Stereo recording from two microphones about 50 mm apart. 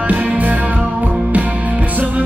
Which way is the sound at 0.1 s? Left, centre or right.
Right.